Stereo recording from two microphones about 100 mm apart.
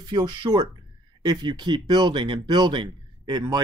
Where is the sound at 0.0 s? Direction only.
45° right (ahead or behind).